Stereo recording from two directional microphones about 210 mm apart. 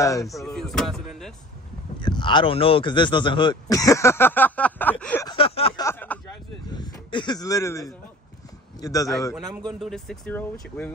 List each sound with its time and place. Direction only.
0.0 s speech: 15° left (ahead or behind)
0.3 s speech: centre (ahead or behind)
2.0 s speech: 20° left (ahead or behind)
5.3 s a sound: 25° left (ahead or behind)
5.9 s speech: 10° left (ahead or behind)
6.7 s speech: 20° left (ahead or behind)
9.7 s speech: centre (ahead or behind)